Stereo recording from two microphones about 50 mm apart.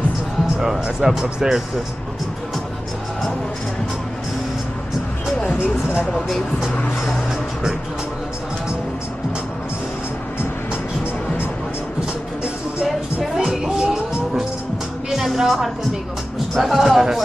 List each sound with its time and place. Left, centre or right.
0.6 s speech: centre
13.4 s music: centre
15.0 s speech: centre